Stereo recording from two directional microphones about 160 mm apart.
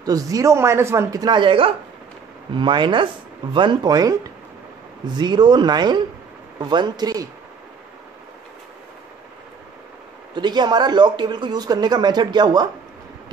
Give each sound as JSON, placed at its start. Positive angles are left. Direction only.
{"t": 0.0, "sound": "speech", "side_deg": -20}
{"t": 10.3, "sound": "speech", "side_deg": -25}